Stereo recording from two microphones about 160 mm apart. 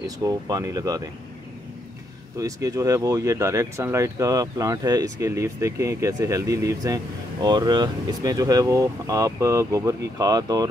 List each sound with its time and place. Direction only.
0.0 s speech: 20° right (ahead or behind)
2.3 s speech: 20° right (ahead or behind)